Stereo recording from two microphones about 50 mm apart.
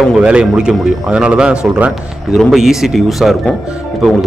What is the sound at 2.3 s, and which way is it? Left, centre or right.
Speech, centre.